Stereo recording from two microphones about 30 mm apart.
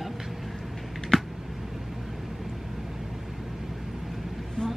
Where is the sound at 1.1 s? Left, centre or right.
Centre.